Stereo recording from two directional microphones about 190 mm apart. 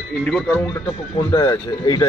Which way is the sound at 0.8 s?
25° left (ahead or behind).